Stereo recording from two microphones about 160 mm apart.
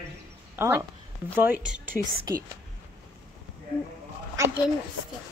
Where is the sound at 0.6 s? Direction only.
15° right (ahead or behind).